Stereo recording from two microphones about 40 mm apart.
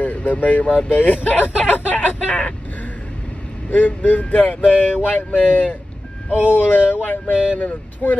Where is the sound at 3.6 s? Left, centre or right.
Left.